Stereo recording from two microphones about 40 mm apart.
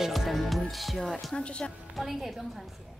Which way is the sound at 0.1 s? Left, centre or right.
Centre.